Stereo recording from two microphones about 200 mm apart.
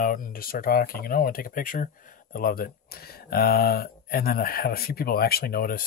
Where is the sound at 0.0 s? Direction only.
45° left (ahead or behind).